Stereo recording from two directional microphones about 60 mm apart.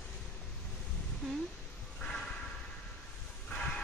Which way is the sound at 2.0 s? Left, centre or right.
Centre.